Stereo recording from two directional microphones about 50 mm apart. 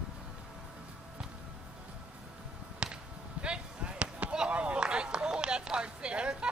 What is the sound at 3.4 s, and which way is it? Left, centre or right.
Basketball bounce, right.